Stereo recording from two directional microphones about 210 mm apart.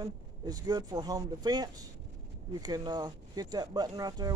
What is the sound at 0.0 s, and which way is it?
Speech, 20° right (ahead or behind).